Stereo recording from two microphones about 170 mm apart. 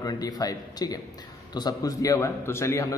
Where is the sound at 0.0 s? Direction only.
20° left (ahead or behind).